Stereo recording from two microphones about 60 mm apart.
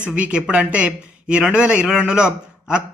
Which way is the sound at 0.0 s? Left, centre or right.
Right.